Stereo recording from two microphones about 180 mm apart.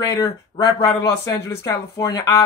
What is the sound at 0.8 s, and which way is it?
Speech, 15° left (ahead or behind).